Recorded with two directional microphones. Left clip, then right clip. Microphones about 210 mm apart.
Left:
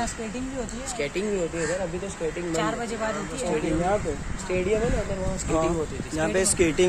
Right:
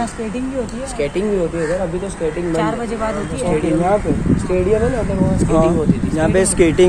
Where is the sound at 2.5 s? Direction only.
25° left (ahead or behind).